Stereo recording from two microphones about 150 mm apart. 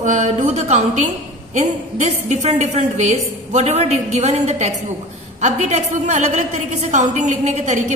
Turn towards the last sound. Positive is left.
turn(degrees=-50)  # may be behind; listen again after turning